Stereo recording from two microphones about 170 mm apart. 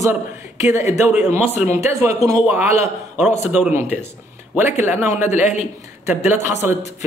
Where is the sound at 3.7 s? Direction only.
15° right (ahead or behind).